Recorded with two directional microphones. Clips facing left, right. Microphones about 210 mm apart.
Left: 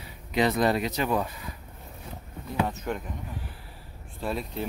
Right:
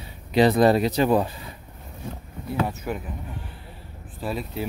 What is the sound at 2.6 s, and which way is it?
Speech, 5° right (ahead or behind).